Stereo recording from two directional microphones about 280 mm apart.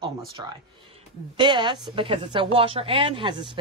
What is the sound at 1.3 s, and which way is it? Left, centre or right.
Speech, centre.